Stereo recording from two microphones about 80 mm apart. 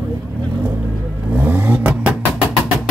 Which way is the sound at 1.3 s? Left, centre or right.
Right.